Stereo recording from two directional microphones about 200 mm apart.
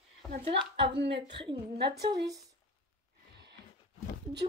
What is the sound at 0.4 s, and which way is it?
Speech, 25° right (ahead or behind).